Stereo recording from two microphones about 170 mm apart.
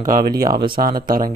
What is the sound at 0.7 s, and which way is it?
Speech, 60° right (ahead or behind).